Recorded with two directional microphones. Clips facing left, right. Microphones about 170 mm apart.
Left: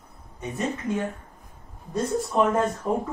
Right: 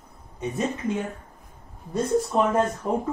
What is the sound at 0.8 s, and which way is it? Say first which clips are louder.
Speech: even; 20° right (ahead or behind).